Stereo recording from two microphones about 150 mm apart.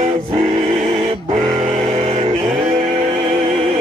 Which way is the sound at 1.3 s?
50° right (ahead or behind).